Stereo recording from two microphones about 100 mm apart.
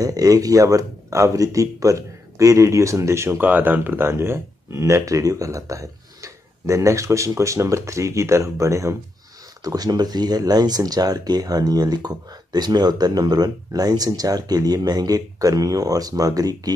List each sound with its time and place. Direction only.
0.0 s speech: 35° right (ahead or behind)